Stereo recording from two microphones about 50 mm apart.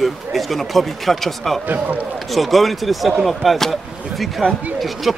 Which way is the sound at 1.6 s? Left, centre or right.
Right.